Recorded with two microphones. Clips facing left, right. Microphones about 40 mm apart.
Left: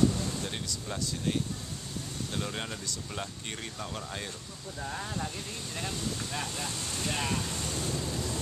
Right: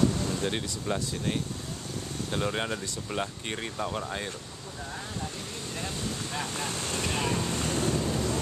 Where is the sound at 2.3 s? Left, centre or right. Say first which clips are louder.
Right 7 dB; right.